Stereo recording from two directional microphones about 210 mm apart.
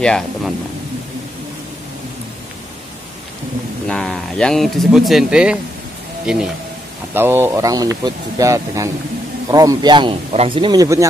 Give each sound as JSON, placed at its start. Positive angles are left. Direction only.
{"t": 0.0, "sound": "speech", "side_deg": 5}
{"t": 3.9, "sound": "speech", "side_deg": 5}